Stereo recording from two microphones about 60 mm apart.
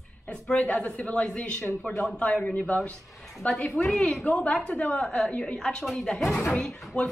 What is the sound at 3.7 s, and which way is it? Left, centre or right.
Speech, centre.